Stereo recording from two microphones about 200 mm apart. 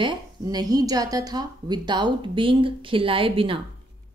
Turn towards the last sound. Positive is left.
turn(degrees=-25)  # may be behind; listen again after turning